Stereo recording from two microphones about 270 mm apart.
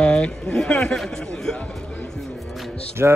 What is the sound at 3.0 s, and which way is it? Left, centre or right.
Speech, centre.